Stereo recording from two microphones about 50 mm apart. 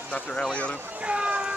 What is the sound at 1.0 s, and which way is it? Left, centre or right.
Speech, right.